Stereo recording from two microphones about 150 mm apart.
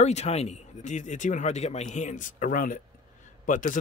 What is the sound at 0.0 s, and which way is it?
Speech, 50° left (ahead or behind).